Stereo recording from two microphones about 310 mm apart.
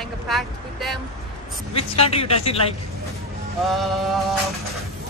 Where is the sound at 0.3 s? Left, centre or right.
Centre.